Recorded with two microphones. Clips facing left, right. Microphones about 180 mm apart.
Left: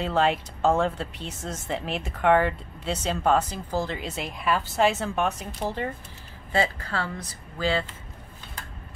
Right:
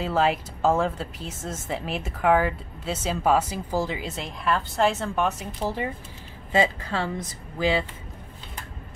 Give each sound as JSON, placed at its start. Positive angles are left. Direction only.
{"t": 0.0, "sound": "speech", "side_deg": 0}